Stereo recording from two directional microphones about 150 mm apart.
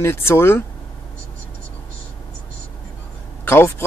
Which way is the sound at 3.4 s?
15° left (ahead or behind).